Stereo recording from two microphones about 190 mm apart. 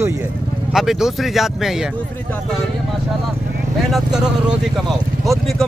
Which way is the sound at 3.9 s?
5° right (ahead or behind).